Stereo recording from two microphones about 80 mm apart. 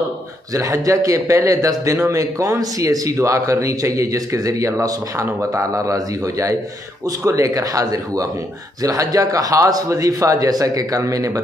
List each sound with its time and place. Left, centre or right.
0.5 s a man's voice: right